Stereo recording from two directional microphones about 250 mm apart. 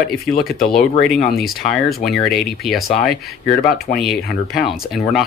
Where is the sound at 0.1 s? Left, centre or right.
Left.